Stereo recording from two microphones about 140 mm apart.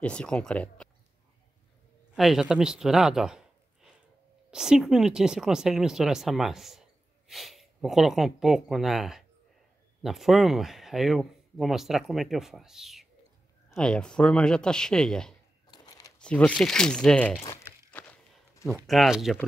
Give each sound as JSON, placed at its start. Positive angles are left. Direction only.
{"t": 0.0, "sound": "speech", "side_deg": 5}
{"t": 2.1, "sound": "speech", "side_deg": 0}
{"t": 15.6, "sound": "a sound", "side_deg": 30}
{"t": 16.2, "sound": "speech", "side_deg": 10}
{"t": 17.6, "sound": "walk", "side_deg": 15}
{"t": 18.7, "sound": "speech", "side_deg": 0}